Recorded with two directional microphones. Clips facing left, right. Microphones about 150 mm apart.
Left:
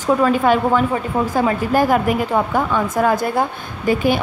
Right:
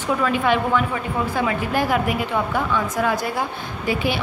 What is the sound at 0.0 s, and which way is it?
A woman's voice, 40° left (ahead or behind).